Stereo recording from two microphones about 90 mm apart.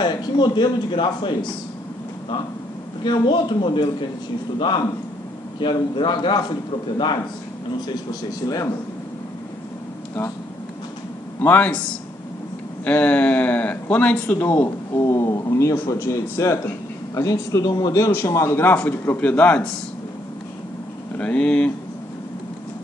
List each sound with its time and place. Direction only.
0.0 s a man's voice: 55° left (ahead or behind)
3.0 s a man's voice: 55° left (ahead or behind)
7.9 s a man's voice: 45° left (ahead or behind)
11.4 s a man's voice: 20° left (ahead or behind)
12.8 s speech: 15° left (ahead or behind)
15.0 s a man's voice: 35° left (ahead or behind); by 19.6 s 15° left (ahead or behind)
21.2 s speech: 10° left (ahead or behind)